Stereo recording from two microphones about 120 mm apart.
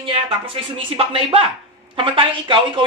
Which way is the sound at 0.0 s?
45° right (ahead or behind).